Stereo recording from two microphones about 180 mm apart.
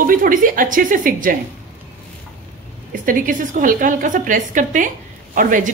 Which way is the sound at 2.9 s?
50° right (ahead or behind).